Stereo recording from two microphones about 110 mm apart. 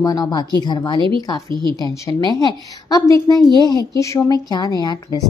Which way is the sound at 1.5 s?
45° right (ahead or behind).